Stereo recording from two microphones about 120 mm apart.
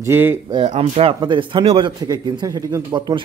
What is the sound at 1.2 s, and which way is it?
Speech, 40° right (ahead or behind).